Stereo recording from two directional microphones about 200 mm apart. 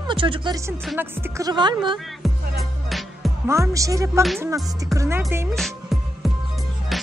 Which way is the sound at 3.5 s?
15° right (ahead or behind).